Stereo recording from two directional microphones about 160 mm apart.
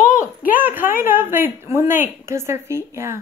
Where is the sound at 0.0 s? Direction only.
55° left (ahead or behind).